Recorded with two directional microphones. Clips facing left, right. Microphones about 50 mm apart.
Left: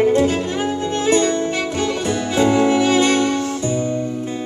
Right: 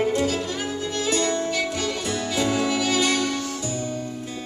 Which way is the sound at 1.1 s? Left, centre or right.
Left.